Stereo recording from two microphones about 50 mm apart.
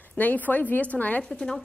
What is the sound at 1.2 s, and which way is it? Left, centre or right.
Speech, centre.